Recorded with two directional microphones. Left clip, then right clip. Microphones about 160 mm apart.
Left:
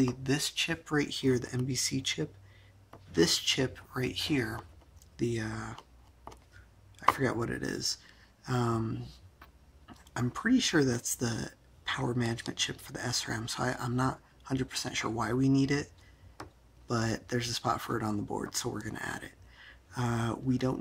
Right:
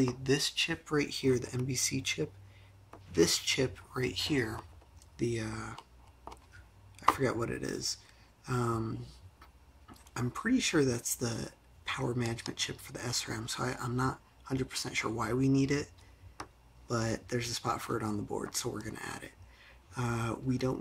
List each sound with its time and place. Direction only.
0.0 s speech: 20° left (ahead or behind)
5.1 s a sound: 20° left (ahead or behind)
7.0 s speech: 20° left (ahead or behind)